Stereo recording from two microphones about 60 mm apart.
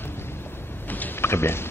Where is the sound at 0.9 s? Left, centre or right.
Left.